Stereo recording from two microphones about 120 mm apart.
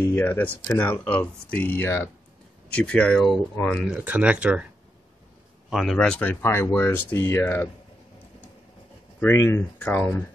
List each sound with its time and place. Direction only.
0.0 s speech: 20° left (ahead or behind)
3.7 s speech: 5° right (ahead or behind)
5.7 s speech: centre (ahead or behind)
6.4 s speech: 20° left (ahead or behind)
9.2 s speech: 20° left (ahead or behind)